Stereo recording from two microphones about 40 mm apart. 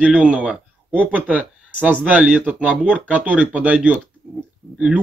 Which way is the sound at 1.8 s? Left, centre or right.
Right.